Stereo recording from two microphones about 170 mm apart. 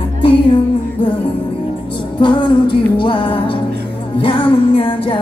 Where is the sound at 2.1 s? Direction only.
30° left (ahead or behind).